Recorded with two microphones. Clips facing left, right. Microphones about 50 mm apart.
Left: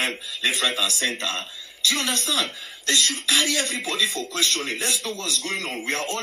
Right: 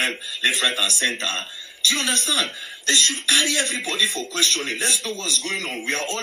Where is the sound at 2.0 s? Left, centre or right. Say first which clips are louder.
Right 2 dB; centre.